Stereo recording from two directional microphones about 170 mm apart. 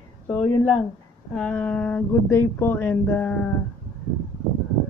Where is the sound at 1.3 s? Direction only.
10° left (ahead or behind).